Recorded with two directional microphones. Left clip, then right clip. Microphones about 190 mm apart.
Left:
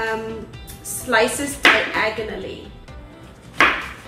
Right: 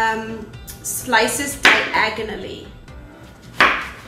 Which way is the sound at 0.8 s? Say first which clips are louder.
Right 1 dB; 15° right (ahead or behind).